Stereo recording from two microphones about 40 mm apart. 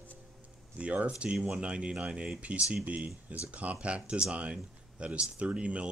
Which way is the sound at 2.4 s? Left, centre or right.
Right.